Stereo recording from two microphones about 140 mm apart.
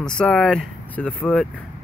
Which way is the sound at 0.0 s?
5° left (ahead or behind).